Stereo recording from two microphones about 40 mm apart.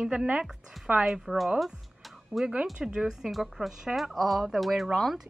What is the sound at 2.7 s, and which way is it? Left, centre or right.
Speech, centre.